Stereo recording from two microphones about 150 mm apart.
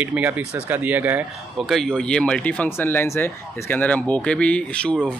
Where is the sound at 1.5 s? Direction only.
Centre (ahead or behind).